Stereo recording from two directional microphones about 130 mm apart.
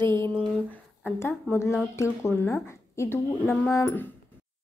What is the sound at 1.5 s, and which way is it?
A woman's voice, 15° left (ahead or behind).